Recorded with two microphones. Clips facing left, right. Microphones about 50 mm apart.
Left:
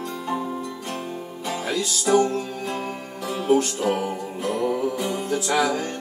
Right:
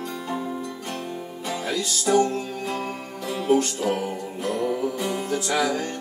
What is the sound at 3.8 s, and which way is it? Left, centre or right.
Music, centre.